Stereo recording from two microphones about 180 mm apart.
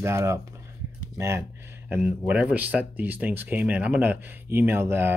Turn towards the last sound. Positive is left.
turn(degrees=-10)  # may be behind; listen again after turning